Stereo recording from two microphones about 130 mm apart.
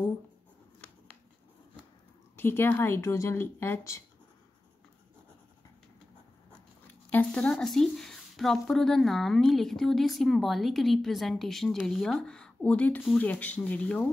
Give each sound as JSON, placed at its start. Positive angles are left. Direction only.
{"t": 2.3, "sound": "speech", "side_deg": 15}
{"t": 7.1, "sound": "speech", "side_deg": 10}